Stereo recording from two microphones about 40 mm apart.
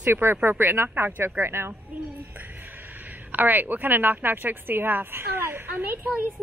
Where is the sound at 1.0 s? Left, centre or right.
Right.